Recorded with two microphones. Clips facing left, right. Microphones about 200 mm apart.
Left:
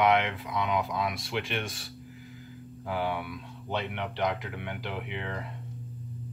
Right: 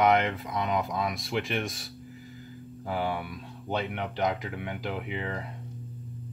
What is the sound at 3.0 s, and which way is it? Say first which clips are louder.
Speech: even; centre (ahead or behind).